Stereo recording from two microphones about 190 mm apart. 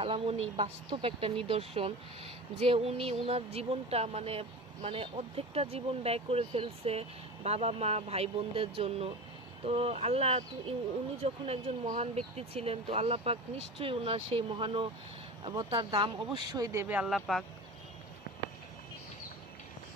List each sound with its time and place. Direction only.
0.0 s speech: 30° right (ahead or behind); by 17.5 s centre (ahead or behind)